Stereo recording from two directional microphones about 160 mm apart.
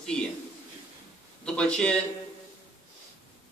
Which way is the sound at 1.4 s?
5° left (ahead or behind).